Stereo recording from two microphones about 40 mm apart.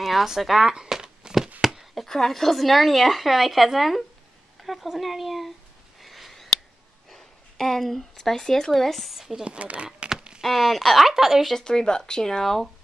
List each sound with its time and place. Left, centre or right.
0.0 s speech: centre
1.6 s a sound: centre
2.0 s speech: centre
4.6 s a sound: centre
4.9 s speech: centre
5.9 s a sound: centre
7.1 s speech: centre
9.4 s speech: right
10.4 s speech: centre
11.5 s speech: centre